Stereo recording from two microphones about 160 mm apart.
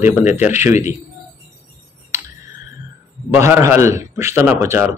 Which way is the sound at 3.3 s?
15° right (ahead or behind).